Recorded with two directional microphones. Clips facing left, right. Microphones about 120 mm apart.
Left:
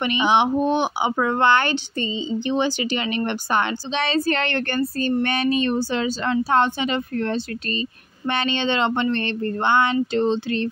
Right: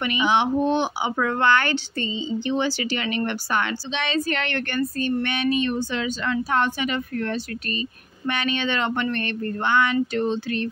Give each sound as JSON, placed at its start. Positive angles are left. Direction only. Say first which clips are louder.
{"t": 0.0, "sound": "speech", "louder": "left 2 dB", "side_deg": 25}